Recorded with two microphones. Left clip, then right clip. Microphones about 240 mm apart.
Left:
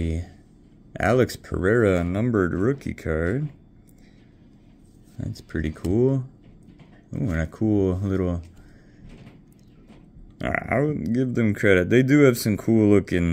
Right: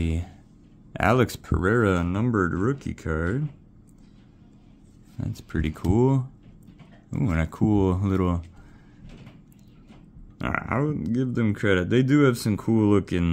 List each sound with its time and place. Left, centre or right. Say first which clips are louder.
0.9 s speech: left 1 dB; centre
5.2 s speech: left 1 dB; centre
10.4 s speech: left 3 dB; centre